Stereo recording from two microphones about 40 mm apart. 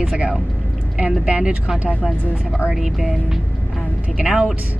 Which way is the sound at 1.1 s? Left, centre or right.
Right.